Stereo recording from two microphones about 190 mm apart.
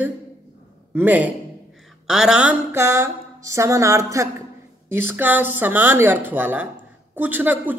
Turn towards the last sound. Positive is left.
turn(degrees=-10)  # may be behind; listen again after turning